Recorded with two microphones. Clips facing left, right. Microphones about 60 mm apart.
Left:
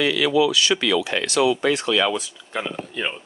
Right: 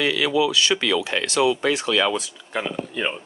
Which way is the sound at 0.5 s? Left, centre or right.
Right.